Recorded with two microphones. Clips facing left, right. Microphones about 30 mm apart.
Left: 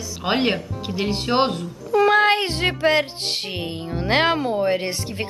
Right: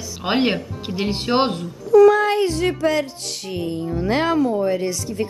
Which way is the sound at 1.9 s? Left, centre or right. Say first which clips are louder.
Right 4 dB; left.